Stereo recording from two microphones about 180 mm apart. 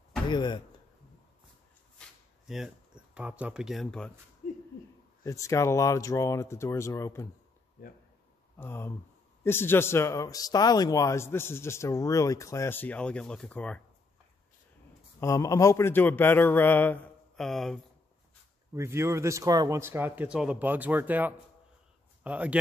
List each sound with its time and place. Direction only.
0.3 s speech: 25° left (ahead or behind)
2.0 s a sound: centre (ahead or behind)
4.4 s owl: 45° left (ahead or behind)
5.2 s speech: 15° left (ahead or behind)
8.5 s speech: 15° left (ahead or behind)
15.1 s speech: 15° left (ahead or behind); by 17.7 s centre (ahead or behind)
18.8 s a man's voice: 15° right (ahead or behind)